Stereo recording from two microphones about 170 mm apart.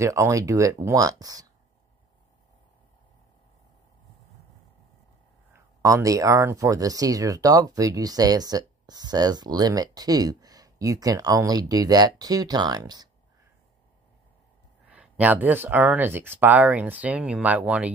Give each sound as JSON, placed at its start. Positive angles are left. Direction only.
{"t": 0.0, "sound": "speech", "side_deg": -20}
{"t": 5.5, "sound": "speech", "side_deg": -15}
{"t": 14.9, "sound": "speech", "side_deg": -10}